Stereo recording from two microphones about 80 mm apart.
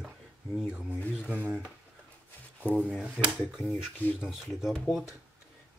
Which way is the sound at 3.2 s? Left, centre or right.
Centre.